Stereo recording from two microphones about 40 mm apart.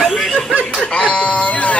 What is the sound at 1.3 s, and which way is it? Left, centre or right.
Speech, left.